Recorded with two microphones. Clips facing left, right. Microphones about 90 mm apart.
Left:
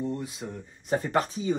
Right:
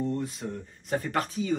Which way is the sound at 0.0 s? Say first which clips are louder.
Right 2 dB; 10° left (ahead or behind).